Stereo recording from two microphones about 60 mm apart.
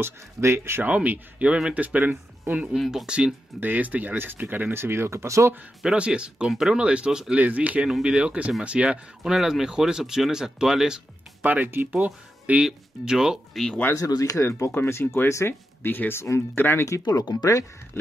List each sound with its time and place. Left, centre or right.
0.0 s speech: right
0.8 s speech: right
2.7 s speech: centre
3.1 s speech: centre
3.6 s speech: right
5.9 s speech: centre
7.3 s speech: right
9.2 s speech: centre
11.4 s speech: right
12.6 s speech: centre
13.9 s speech: left
14.4 s speech: left
15.8 s speech: left
16.8 s speech: left